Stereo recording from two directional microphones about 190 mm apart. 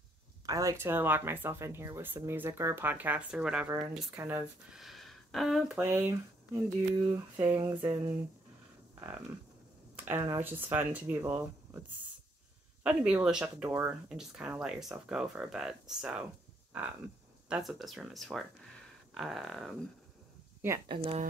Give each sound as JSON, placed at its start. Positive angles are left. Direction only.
{"t": 0.5, "sound": "speech", "side_deg": -20}
{"t": 4.7, "sound": "speech", "side_deg": 0}
{"t": 7.1, "sound": "a sound", "side_deg": -20}
{"t": 7.7, "sound": "speech", "side_deg": -10}
{"t": 9.9, "sound": "speech", "side_deg": -10}
{"t": 12.8, "sound": "speech", "side_deg": -5}
{"t": 17.5, "sound": "speech", "side_deg": 0}
{"t": 20.6, "sound": "speech", "side_deg": -15}
{"t": 21.0, "sound": "a woman's voice", "side_deg": -30}